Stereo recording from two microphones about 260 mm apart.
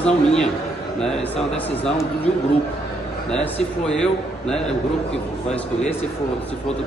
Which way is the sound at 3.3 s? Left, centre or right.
Centre.